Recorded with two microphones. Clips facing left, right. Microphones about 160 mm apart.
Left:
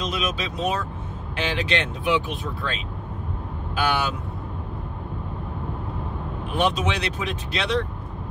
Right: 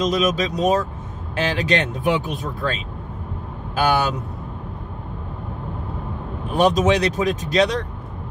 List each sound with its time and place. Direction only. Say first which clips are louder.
0.0 s speech: right 8 dB; 40° right (ahead or behind)
6.5 s speech: right 7 dB; 40° right (ahead or behind)